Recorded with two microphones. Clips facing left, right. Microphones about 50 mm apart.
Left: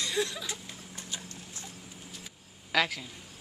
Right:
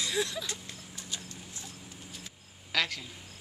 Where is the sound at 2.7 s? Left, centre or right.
Centre.